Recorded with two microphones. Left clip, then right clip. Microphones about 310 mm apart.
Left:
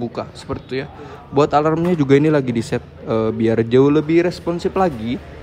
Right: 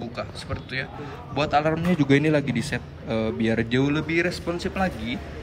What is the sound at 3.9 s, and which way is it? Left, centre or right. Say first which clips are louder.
A man's voice: left 8 dB; centre.